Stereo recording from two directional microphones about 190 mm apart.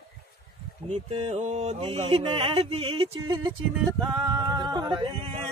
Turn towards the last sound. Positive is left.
turn(degrees=-25)  # may be behind; listen again after turning